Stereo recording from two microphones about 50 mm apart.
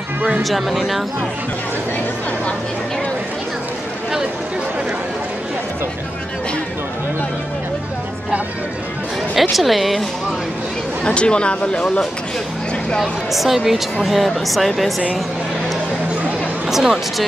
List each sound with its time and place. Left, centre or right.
0.4 s speech: centre
9.3 s speech: centre
11.1 s speech: left
13.0 s speech: centre
16.6 s speech: centre